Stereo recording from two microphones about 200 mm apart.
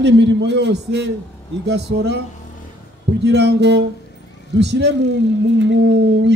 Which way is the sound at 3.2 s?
60° right (ahead or behind).